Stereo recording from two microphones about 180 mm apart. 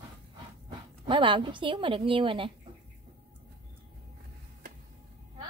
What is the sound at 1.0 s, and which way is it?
A woman's voice, 25° right (ahead or behind).